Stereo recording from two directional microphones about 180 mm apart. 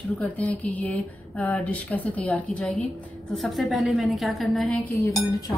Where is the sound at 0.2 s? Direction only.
10° left (ahead or behind).